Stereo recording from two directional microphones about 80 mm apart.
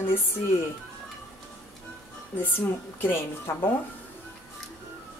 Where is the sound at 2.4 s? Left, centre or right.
Left.